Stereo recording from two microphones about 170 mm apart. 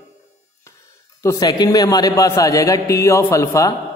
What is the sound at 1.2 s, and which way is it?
A man's voice, 20° left (ahead or behind).